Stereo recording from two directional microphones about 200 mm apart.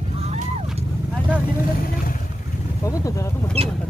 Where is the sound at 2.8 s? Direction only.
15° left (ahead or behind).